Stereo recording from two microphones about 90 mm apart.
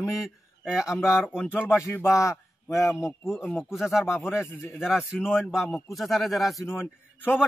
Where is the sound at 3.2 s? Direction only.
5° right (ahead or behind).